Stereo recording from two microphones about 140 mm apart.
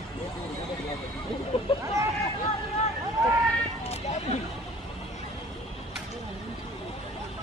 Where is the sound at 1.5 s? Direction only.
45° left (ahead or behind).